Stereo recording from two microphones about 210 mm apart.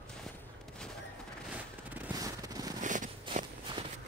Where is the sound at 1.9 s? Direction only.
15° right (ahead or behind).